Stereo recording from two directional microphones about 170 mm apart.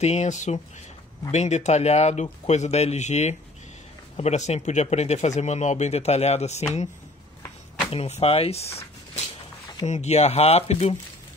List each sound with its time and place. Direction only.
0.0 s speech: 45° left (ahead or behind)
7.9 s speech: 35° left (ahead or behind)